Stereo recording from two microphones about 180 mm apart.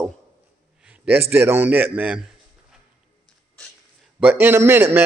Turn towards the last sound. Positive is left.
turn(degrees=-15)  # may be behind; listen again after turning